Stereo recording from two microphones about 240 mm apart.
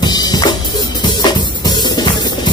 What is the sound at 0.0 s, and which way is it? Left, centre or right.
Music, centre.